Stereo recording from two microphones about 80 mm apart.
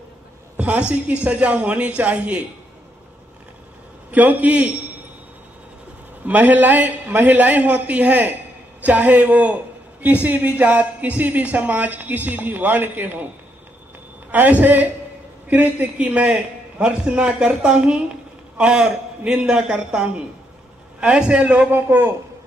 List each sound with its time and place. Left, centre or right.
0.6 s a man's voice: centre
4.1 s speech: centre
6.2 s speech: right
14.3 s a man's voice: right